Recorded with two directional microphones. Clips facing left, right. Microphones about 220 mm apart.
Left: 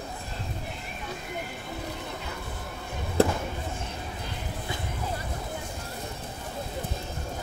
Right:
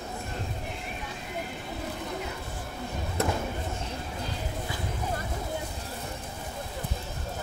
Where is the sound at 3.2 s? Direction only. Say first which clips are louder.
Left 6 dB; 30° left (ahead or behind).